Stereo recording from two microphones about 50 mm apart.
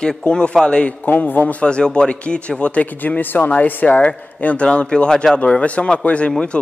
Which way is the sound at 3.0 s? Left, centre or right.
Left.